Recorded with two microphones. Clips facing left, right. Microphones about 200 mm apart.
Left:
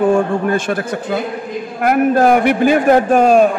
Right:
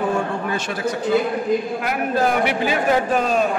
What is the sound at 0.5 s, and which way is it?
A man's voice, 55° left (ahead or behind).